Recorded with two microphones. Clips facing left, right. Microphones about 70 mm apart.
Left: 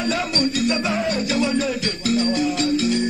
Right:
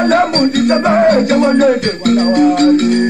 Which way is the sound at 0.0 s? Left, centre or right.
Right.